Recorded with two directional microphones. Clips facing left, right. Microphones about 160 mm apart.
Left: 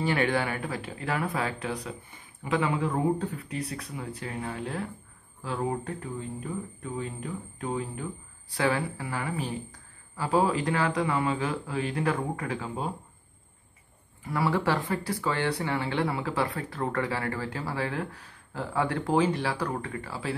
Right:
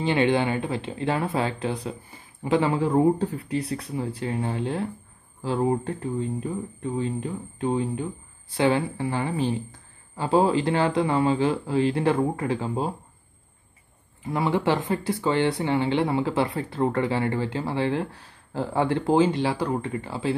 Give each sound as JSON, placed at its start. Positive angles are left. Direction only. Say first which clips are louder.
{"t": 0.0, "sound": "speech", "louder": "right 5 dB", "side_deg": -20}
{"t": 14.2, "sound": "speech", "louder": "right 3 dB", "side_deg": -20}